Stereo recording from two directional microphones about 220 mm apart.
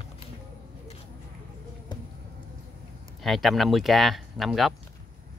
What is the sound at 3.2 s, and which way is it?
Speech, centre (ahead or behind).